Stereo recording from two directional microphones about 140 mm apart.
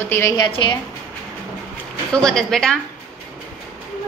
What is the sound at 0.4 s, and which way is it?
Speech, 35° left (ahead or behind).